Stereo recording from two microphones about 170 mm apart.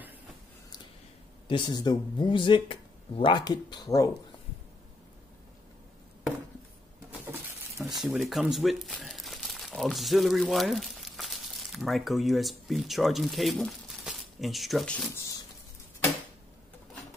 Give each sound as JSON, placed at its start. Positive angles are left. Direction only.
{"t": 1.5, "sound": "speech", "side_deg": 25}
{"t": 7.1, "sound": "a sound", "side_deg": -15}
{"t": 7.9, "sound": "speech", "side_deg": 0}